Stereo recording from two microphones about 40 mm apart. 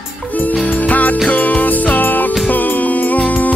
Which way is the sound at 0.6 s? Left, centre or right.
Left.